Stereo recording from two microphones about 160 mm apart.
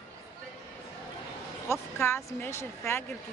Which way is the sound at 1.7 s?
15° left (ahead or behind).